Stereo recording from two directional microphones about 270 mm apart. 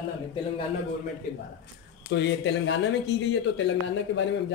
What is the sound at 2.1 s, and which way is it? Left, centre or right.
Speech, left.